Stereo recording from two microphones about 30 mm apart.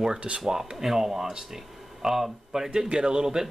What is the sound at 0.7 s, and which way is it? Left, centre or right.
Speech, centre.